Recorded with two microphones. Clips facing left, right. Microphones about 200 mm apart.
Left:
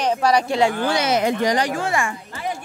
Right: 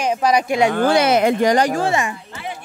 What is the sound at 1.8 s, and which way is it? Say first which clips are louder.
Speech: right 3 dB; 20° right (ahead or behind).